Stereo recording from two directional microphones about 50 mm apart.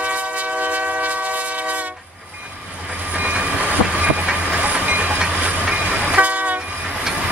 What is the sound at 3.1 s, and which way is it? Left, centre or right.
Train, right.